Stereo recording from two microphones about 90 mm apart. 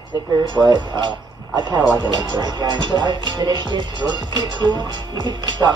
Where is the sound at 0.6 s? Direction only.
60° right (ahead or behind).